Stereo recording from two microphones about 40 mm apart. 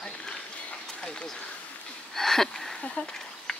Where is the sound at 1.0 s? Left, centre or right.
Left.